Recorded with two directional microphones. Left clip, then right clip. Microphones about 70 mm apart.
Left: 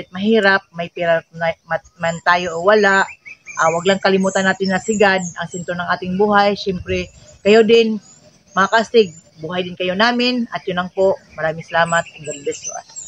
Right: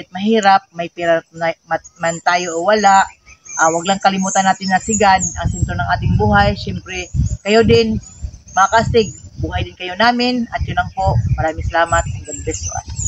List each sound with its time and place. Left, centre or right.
0.1 s speech: left